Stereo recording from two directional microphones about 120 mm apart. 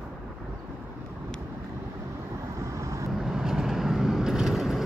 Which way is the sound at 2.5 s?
25° right (ahead or behind).